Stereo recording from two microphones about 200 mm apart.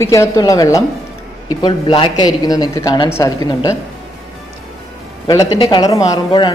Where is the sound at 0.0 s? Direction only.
15° left (ahead or behind).